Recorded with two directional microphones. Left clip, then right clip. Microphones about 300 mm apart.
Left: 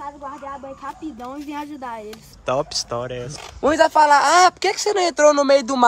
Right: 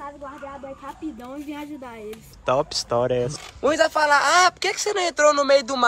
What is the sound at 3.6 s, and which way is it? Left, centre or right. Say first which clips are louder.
A man's voice: left 5 dB; left.